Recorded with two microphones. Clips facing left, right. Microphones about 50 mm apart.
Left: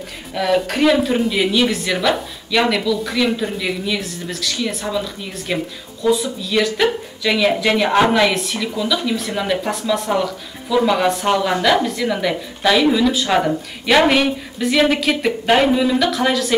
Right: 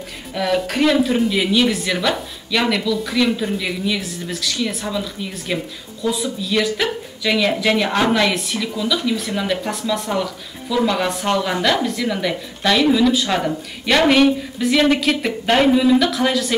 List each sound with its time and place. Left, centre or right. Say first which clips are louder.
0.3 s speech: left 2 dB; centre